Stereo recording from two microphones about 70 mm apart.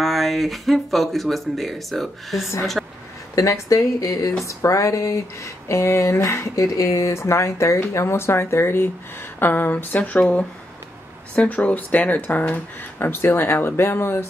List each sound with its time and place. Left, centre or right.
0.0 s speech: centre
2.8 s a sound: centre
3.3 s speech: left
11.3 s speech: left